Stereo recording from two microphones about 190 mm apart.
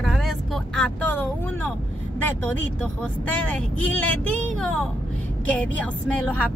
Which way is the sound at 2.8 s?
5° left (ahead or behind).